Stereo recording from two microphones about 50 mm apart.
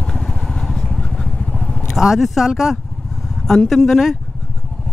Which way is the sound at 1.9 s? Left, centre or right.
Centre.